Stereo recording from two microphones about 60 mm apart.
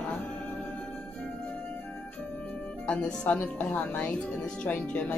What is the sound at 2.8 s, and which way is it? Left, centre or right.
Speech, left.